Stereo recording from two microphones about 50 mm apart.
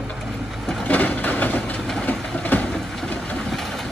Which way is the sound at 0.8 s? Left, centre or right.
Left.